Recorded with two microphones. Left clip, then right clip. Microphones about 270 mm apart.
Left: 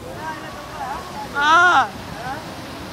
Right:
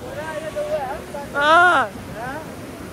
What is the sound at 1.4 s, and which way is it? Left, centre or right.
Speech, centre.